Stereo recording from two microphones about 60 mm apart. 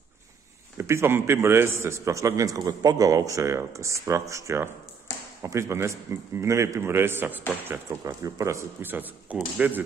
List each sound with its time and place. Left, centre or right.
0.7 s a man's voice: right
8.0 s speech: right
8.8 s a man's voice: right